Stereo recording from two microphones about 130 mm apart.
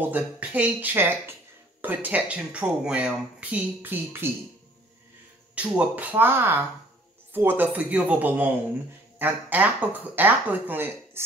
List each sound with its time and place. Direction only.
0.0 s speech: 15° right (ahead or behind)
5.5 s speech: 10° right (ahead or behind)